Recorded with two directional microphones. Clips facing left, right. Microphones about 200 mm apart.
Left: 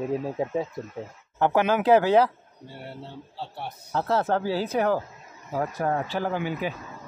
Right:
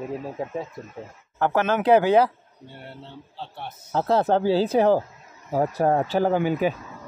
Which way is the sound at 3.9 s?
20° right (ahead or behind).